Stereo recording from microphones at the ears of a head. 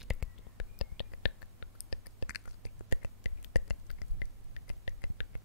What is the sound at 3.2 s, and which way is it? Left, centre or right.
Whispering, left.